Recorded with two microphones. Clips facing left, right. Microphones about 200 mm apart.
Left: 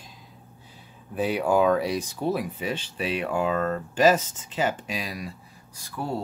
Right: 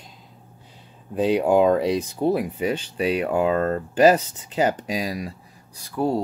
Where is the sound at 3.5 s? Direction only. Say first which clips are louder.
Right 4 dB; 35° right (ahead or behind).